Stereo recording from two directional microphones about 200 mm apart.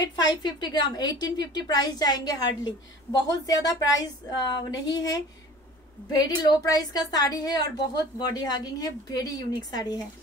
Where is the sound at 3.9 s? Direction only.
15° left (ahead or behind).